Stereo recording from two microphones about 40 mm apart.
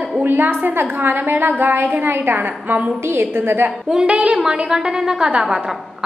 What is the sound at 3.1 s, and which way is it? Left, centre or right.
Speech, right.